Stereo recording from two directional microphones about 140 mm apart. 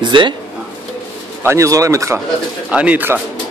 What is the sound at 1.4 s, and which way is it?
Speech, 20° right (ahead or behind).